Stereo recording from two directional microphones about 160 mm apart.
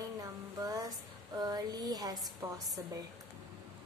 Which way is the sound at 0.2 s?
20° right (ahead or behind).